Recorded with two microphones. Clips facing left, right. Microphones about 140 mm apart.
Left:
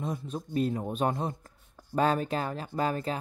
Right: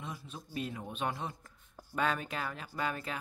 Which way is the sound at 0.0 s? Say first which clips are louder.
Left 10 dB; 40° left (ahead or behind).